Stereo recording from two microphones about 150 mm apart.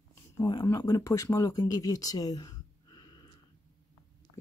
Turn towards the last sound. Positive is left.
turn(degrees=30)  # may be behind; listen again after turning